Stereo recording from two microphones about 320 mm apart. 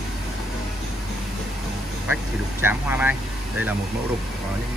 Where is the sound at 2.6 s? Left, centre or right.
Centre.